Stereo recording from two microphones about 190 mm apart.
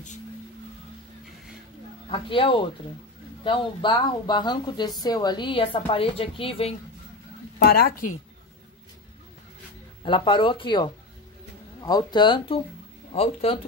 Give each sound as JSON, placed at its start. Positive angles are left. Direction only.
{"t": 2.0, "sound": "speech", "side_deg": 25}
{"t": 7.5, "sound": "speech", "side_deg": 55}
{"t": 10.0, "sound": "speech", "side_deg": 25}